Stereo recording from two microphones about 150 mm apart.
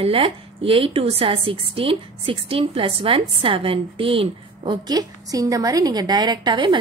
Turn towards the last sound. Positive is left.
turn(degrees=-30)  # may be behind; listen again after turning